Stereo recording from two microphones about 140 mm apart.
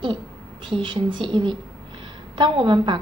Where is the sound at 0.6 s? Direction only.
35° right (ahead or behind).